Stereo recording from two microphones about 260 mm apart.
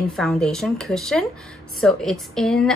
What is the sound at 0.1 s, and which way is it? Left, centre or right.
A woman's voice, centre.